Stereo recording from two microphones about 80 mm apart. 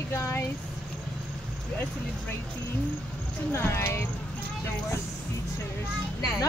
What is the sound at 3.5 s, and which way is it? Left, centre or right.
Speech, left.